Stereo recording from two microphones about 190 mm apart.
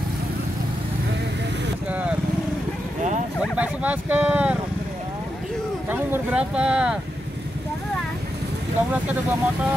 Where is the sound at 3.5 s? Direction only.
10° right (ahead or behind).